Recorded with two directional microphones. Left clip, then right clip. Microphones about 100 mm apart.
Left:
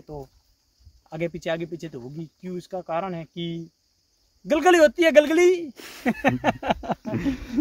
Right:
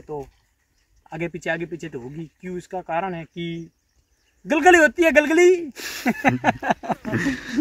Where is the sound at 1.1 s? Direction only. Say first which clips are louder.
Right 1 dB; 70° left (ahead or behind).